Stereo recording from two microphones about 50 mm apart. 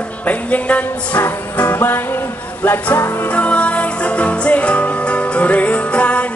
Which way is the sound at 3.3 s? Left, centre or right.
Left.